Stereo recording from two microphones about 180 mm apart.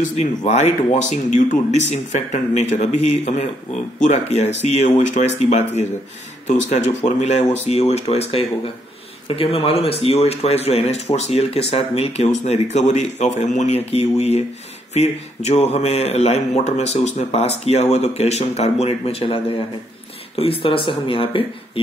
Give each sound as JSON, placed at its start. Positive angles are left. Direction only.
{"t": 0.1, "sound": "speech", "side_deg": 40}